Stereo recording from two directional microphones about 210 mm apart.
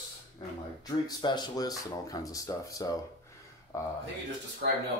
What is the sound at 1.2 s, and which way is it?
A man's voice, 20° left (ahead or behind).